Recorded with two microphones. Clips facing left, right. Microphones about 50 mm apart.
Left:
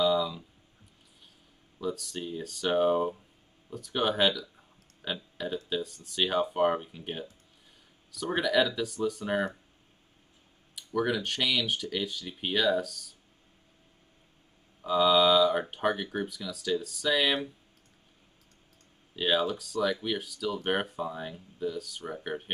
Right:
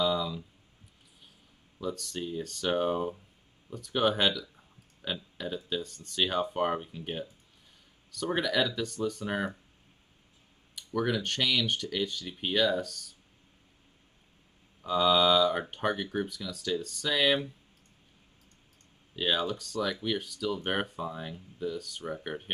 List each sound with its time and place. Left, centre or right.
0.0 s a sound: centre
1.8 s speech: centre
10.7 s speech: centre
14.8 s speech: centre
19.1 s speech: centre